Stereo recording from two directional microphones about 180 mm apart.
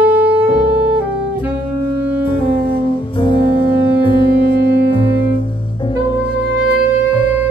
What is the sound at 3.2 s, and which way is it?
Music, 30° left (ahead or behind).